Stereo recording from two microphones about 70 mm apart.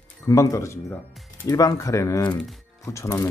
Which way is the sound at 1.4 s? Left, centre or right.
Left.